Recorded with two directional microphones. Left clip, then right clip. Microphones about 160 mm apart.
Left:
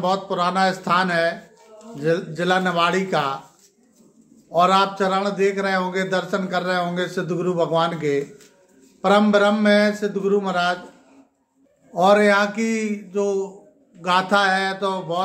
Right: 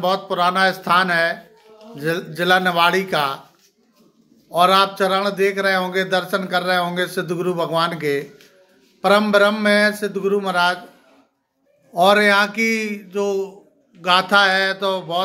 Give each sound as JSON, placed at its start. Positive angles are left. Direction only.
{"t": 0.0, "sound": "a man's voice", "side_deg": -10}
{"t": 4.5, "sound": "a man's voice", "side_deg": -15}
{"t": 11.9, "sound": "a man's voice", "side_deg": -15}